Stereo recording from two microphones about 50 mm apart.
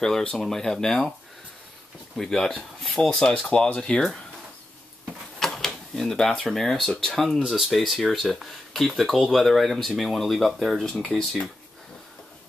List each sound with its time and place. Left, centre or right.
0.0 s speech: centre
2.1 s speech: centre
5.4 s drawer open or close: centre
6.4 s speech: centre
10.9 s speech: centre